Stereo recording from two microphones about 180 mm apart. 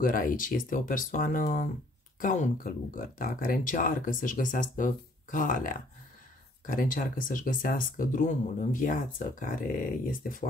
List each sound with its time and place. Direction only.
0.0 s speech: 50° left (ahead or behind)